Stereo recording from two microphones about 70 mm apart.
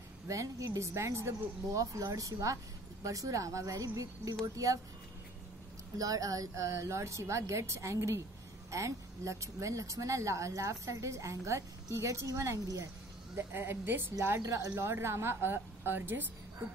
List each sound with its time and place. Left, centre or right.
0.3 s speech: right
5.9 s speech: right
13.4 s a woman's voice: right
14.4 s a woman's voice: right